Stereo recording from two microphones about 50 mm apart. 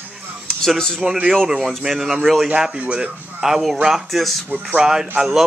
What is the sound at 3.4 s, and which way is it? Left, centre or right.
Speech, centre.